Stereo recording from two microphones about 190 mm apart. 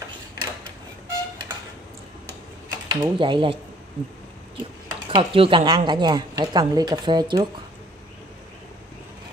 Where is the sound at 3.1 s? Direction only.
25° right (ahead or behind).